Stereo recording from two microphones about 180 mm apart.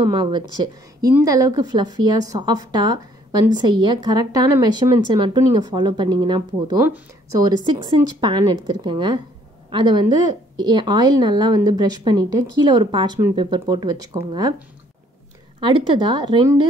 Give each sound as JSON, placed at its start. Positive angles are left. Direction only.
{"t": 0.0, "sound": "a woman's voice", "side_deg": -25}
{"t": 15.6, "sound": "a woman's voice", "side_deg": -25}